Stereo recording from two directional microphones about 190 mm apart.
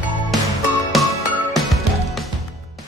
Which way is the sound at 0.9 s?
Centre (ahead or behind).